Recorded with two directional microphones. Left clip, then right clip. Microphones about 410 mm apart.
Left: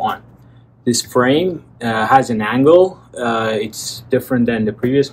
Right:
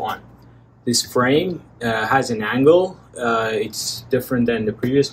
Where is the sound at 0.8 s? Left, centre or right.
Left.